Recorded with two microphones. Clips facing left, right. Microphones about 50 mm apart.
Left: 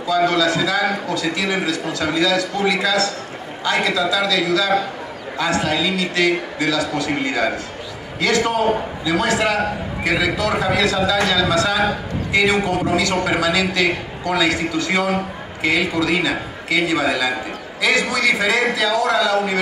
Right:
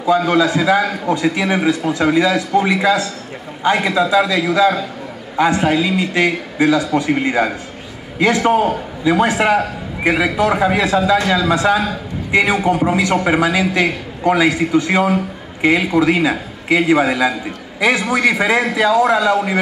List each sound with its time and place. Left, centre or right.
0.0 s a man's voice: right